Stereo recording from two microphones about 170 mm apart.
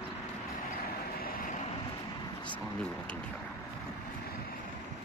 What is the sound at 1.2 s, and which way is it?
Vehicle, 55° left (ahead or behind).